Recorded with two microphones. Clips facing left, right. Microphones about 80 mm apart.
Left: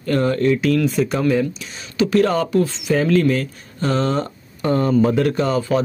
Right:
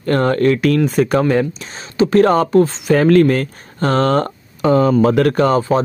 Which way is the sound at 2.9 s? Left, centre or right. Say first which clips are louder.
Right 5 dB; right.